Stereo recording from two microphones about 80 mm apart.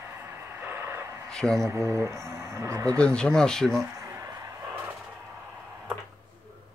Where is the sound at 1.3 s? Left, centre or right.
Centre.